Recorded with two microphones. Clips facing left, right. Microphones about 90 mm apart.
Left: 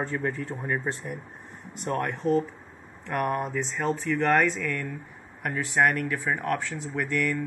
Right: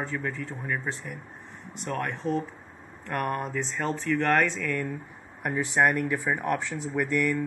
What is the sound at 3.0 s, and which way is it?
Speech, 5° left (ahead or behind).